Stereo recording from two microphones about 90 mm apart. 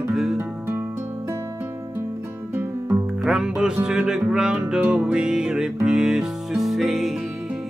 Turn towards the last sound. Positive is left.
turn(degrees=0)  # may be behind; listen again after turning